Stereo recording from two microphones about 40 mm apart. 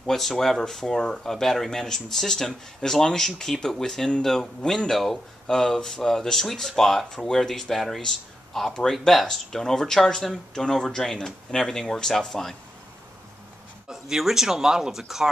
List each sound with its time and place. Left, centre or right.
0.0 s speech: centre
7.1 s speech: centre
13.8 s speech: centre